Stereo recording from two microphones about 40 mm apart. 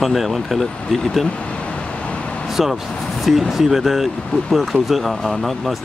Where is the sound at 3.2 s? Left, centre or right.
Centre.